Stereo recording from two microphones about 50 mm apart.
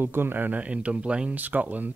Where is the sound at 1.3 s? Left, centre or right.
Right.